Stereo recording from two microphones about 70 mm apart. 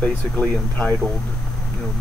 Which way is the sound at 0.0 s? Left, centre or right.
Left.